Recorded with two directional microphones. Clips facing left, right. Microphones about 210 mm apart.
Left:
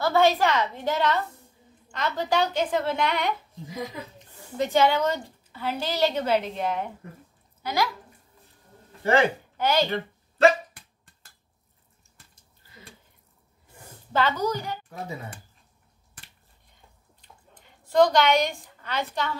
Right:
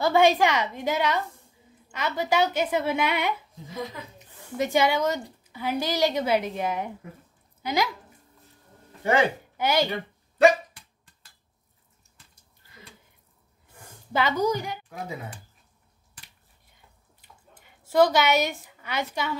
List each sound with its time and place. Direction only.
0.0 s a woman's voice: 15° right (ahead or behind)
3.6 s speech: 15° left (ahead or behind)
4.3 s a woman's voice: 10° right (ahead or behind)
9.6 s speech: 10° right (ahead or behind)
14.4 s a woman's voice: 10° right (ahead or behind)
17.2 s a sound: 5° right (ahead or behind)